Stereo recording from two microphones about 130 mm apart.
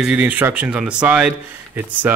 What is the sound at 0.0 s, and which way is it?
Speech, 10° right (ahead or behind).